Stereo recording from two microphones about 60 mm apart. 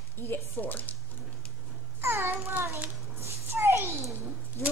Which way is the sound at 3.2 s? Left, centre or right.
Right.